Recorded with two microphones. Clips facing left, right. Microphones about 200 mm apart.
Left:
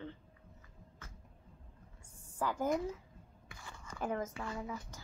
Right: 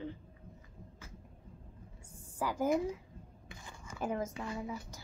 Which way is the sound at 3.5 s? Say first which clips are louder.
Even; 15° right (ahead or behind).